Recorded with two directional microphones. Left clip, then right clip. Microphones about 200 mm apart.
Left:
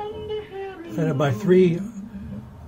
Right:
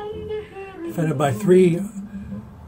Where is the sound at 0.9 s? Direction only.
15° right (ahead or behind).